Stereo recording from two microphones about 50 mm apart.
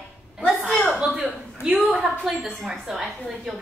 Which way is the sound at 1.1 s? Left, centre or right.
Centre.